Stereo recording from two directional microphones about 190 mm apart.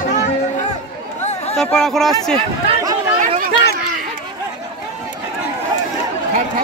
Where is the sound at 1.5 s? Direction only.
5° left (ahead or behind).